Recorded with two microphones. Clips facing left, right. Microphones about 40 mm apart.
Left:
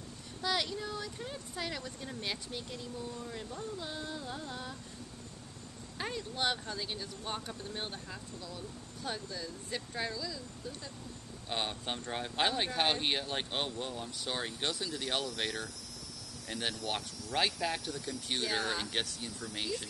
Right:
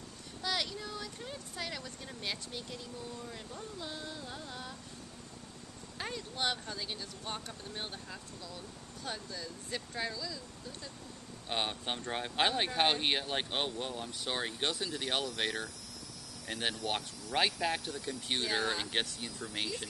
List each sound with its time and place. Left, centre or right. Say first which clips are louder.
0.4 s speech: left 2 dB; centre
5.9 s speech: left 2 dB; centre
11.4 s speech: right 1 dB; centre
18.9 s speech: right 1 dB; centre